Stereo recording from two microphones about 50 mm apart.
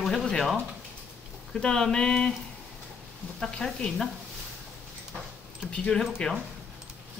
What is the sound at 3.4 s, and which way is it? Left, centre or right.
Speech, centre.